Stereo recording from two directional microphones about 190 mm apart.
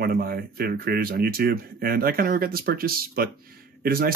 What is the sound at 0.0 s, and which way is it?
Speech, 50° right (ahead or behind).